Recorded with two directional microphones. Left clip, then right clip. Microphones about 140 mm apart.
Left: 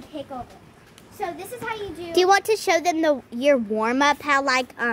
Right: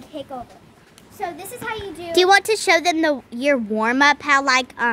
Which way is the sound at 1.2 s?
15° right (ahead or behind).